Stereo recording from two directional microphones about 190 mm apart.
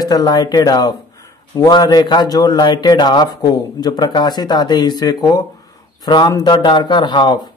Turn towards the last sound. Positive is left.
turn(degrees=20)  # may be behind; listen again after turning